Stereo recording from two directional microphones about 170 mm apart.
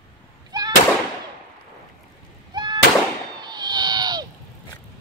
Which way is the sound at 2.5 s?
25° right (ahead or behind).